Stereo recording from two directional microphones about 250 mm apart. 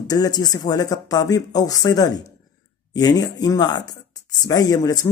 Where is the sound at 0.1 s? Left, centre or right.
Centre.